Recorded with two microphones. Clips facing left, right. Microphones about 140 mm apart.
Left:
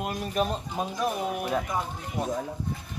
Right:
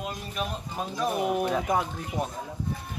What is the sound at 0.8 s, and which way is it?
Speech, 20° left (ahead or behind).